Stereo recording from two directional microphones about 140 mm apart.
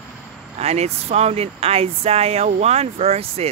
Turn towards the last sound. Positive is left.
turn(degrees=-50)  # may be behind; listen again after turning